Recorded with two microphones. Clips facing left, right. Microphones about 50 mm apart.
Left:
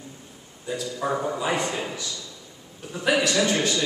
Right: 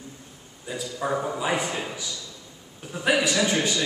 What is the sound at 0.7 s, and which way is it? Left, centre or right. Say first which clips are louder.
A man's voice: left 1 dB; centre.